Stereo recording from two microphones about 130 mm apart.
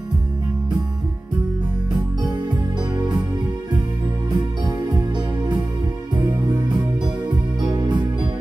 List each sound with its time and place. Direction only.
6.5 s music: 35° right (ahead or behind)